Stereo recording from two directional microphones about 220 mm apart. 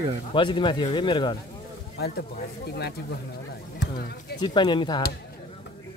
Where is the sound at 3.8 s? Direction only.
50° left (ahead or behind).